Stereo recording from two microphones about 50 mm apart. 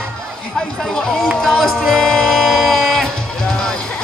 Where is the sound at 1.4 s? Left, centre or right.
Centre.